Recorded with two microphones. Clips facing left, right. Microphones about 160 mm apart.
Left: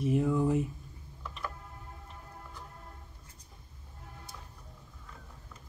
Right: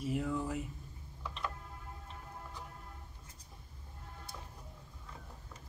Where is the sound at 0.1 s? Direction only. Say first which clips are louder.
Left 8 dB; 15° left (ahead or behind).